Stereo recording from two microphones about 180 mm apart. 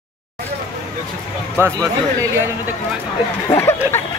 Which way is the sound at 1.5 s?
15° right (ahead or behind).